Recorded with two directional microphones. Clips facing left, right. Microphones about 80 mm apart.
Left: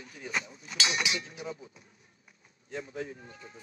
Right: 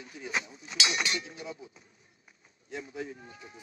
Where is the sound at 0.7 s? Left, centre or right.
Left.